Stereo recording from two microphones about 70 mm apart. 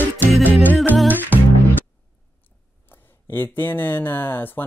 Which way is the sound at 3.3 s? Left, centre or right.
Left.